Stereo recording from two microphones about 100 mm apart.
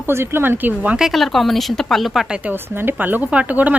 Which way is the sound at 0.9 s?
Centre (ahead or behind).